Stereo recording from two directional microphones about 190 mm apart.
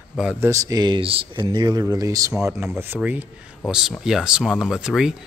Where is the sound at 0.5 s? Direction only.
20° right (ahead or behind).